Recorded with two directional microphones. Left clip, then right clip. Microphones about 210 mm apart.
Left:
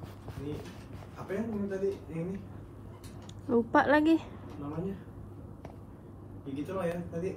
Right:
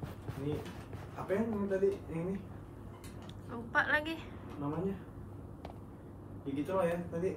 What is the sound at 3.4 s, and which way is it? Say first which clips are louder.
Speech: left 7 dB; 10° left (ahead or behind).